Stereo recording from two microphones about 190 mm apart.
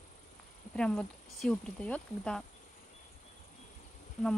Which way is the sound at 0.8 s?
5° left (ahead or behind).